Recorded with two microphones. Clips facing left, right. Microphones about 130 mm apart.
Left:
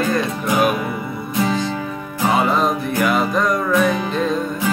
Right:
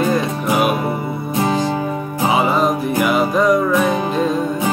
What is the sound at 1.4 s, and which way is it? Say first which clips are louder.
Music: right 2 dB; 45° right (ahead or behind).